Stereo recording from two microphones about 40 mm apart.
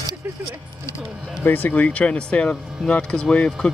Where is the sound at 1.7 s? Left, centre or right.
Left.